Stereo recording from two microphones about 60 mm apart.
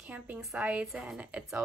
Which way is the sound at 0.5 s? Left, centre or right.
Right.